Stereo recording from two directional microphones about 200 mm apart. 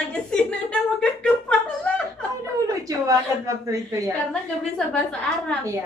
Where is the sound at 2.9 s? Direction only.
15° right (ahead or behind).